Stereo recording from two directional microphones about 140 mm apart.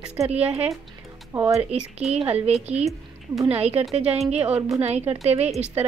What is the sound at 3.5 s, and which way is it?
Speech, 45° right (ahead or behind).